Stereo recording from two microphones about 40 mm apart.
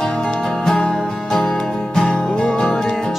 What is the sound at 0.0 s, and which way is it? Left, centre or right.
Music, left.